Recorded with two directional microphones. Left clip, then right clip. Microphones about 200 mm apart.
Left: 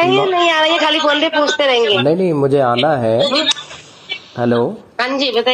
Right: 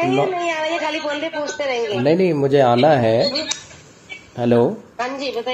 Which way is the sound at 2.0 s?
20° left (ahead or behind).